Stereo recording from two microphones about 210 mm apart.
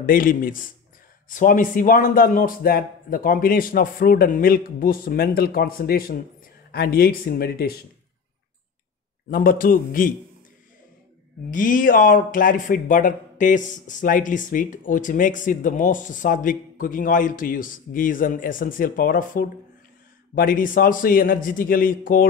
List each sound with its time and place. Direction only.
0.0 s a man's voice: 40° left (ahead or behind)
9.3 s a man's voice: 40° left (ahead or behind)
11.5 s a man's voice: 40° left (ahead or behind)